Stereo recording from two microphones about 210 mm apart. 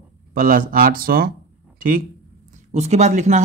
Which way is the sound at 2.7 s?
30° right (ahead or behind).